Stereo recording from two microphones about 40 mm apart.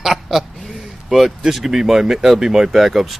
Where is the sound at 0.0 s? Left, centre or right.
Centre.